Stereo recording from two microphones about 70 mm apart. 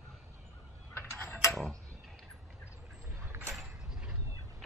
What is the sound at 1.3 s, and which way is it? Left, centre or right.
Mechanisms, left.